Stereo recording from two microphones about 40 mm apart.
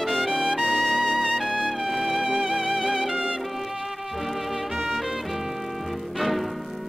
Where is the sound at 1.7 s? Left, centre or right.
Centre.